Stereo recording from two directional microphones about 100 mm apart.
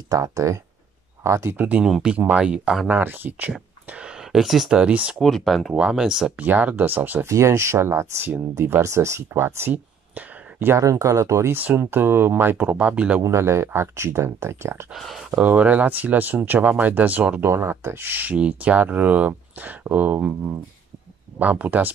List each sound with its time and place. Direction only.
0.1 s speech: 35° right (ahead or behind); by 2.9 s 5° right (ahead or behind)
2.9 s speech: 20° right (ahead or behind)
5.2 s speech: 5° left (ahead or behind); by 7.2 s 20° right (ahead or behind)
7.2 s speech: 30° right (ahead or behind)
10.8 s speech: 30° right (ahead or behind); by 13.2 s 10° right (ahead or behind)
13.2 s speech: 25° right (ahead or behind)
14.9 s speech: centre (ahead or behind)
15.4 s speech: 15° right (ahead or behind)
17.5 s speech: 25° right (ahead or behind)